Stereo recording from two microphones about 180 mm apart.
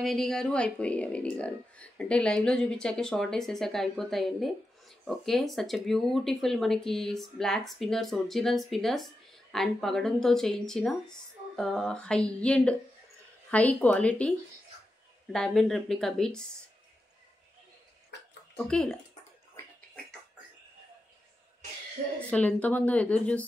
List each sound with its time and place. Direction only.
0.0 s speech: centre (ahead or behind)
15.3 s speech: centre (ahead or behind)
18.6 s speech: 5° left (ahead or behind)
22.0 s speech: 55° right (ahead or behind)
22.3 s speech: 10° left (ahead or behind)